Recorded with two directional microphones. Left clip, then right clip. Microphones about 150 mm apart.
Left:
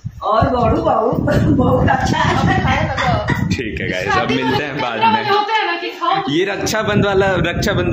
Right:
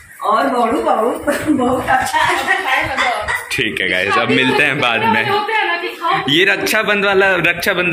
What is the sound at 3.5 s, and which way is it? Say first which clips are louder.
Speech: right 5 dB; centre (ahead or behind).